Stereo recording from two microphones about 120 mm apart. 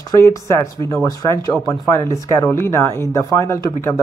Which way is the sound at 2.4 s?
20° left (ahead or behind).